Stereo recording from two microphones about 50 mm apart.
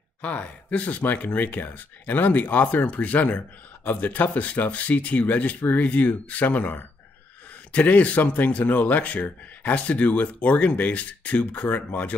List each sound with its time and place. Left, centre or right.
0.2 s speech: left